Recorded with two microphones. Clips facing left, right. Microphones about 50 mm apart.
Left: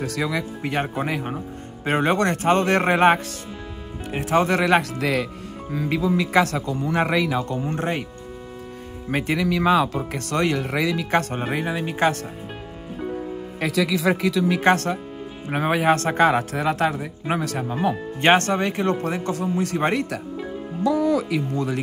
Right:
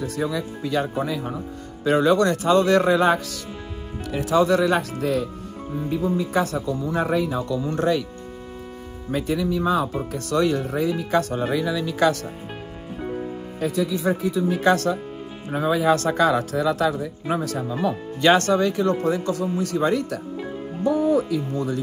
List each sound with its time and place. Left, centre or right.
0.0 s speech: left
7.6 s speech: left
9.1 s speech: left
9.5 s speech: left
11.1 s speech: left
13.6 s speech: left
14.6 s speech: left
17.8 s speech: left
20.8 s speech: left